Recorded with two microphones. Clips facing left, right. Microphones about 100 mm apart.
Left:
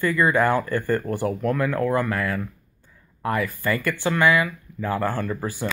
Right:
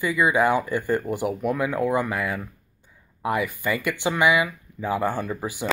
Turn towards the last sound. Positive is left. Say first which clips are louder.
# left 1 dB
turn(degrees=-15)  # may be behind; listen again after turning